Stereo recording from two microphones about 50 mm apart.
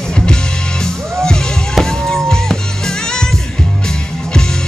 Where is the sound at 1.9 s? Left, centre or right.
Centre.